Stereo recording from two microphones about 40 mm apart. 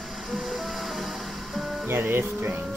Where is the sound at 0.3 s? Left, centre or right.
Centre.